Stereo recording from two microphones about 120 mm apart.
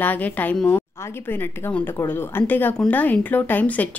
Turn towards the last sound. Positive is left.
turn(degrees=15)  # may be behind; listen again after turning